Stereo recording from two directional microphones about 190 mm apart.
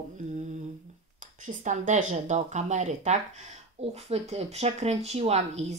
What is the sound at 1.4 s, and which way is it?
A woman's voice, 40° right (ahead or behind).